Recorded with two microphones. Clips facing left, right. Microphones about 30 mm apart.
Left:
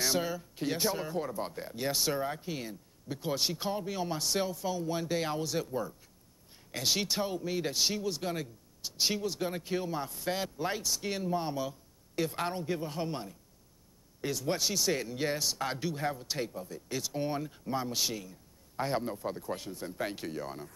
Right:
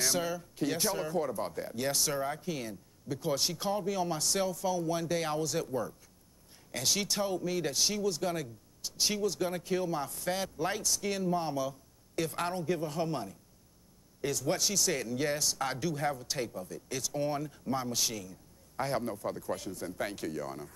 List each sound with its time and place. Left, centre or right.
0.0 s speech: centre